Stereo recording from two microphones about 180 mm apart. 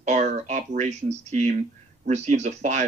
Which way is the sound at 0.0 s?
40° right (ahead or behind).